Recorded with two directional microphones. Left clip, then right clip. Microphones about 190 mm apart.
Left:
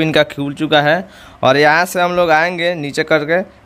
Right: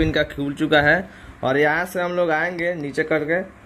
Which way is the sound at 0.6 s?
35° left (ahead or behind).